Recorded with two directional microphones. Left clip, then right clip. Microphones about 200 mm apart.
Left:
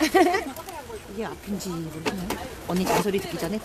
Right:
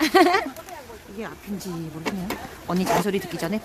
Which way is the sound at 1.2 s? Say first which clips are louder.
Left 1 dB; 10° right (ahead or behind).